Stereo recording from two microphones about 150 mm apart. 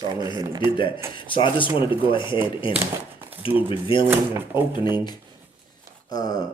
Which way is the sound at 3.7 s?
35° left (ahead or behind).